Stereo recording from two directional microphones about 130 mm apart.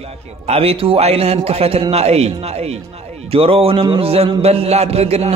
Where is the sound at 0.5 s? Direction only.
50° right (ahead or behind).